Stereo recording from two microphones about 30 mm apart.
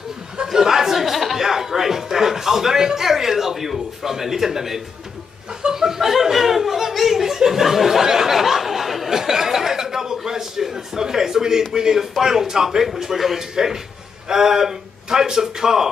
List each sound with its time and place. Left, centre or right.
0.5 s chatter: centre
1.4 s music: centre
5.7 s chuckle: centre
7.3 s a sound: centre
9.1 s chuckle: centre
11.7 s a man's voice: centre